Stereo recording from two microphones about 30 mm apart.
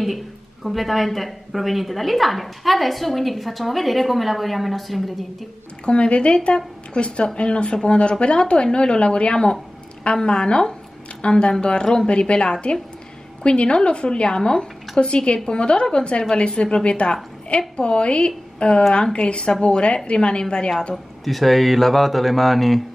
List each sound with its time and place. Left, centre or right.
0.7 s a woman's voice: centre
5.9 s a woman's voice: left
21.2 s a woman's voice: centre